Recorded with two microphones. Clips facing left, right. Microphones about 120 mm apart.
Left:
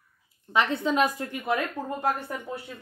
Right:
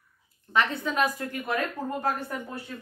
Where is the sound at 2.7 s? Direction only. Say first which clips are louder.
Right 3 dB; 10° left (ahead or behind).